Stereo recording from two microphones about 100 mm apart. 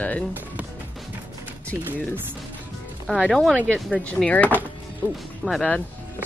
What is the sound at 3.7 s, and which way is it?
Speech, 15° left (ahead or behind).